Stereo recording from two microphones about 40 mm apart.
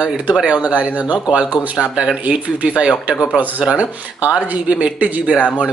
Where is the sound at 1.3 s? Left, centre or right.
Right.